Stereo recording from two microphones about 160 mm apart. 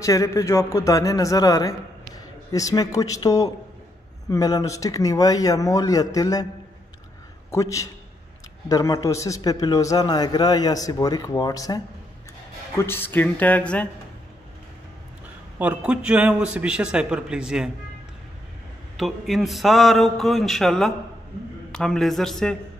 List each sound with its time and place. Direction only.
0.0 s a man's voice: 20° left (ahead or behind)
7.5 s a man's voice: 20° left (ahead or behind)
15.6 s a man's voice: 10° right (ahead or behind)
18.9 s a man's voice: centre (ahead or behind)